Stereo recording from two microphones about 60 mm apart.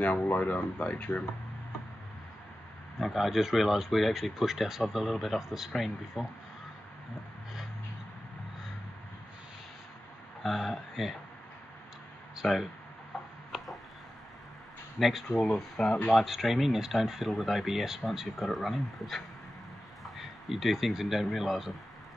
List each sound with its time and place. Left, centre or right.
0.0 s speech: left
3.0 s speech: centre
10.4 s speech: centre
12.4 s speech: centre
13.1 s a sound: centre
15.0 s speech: centre